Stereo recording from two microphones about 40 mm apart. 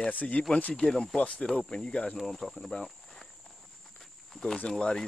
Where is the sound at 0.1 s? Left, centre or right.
Left.